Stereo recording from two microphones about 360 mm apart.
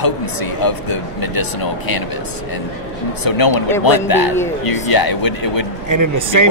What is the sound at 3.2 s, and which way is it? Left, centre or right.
A man's voice, left.